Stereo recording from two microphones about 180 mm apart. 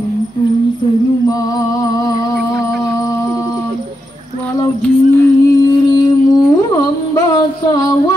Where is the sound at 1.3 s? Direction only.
20° left (ahead or behind).